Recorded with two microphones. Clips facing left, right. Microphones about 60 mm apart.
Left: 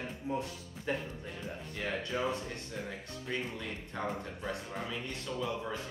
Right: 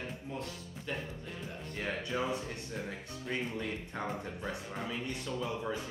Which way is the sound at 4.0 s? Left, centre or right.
Centre.